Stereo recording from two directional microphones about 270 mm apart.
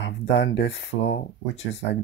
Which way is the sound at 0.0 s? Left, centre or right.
Left.